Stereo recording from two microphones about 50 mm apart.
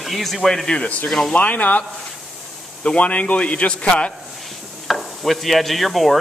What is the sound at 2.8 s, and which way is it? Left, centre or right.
Speech, left.